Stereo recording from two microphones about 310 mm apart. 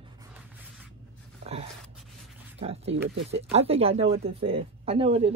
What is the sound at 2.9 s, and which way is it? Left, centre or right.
Speech, right.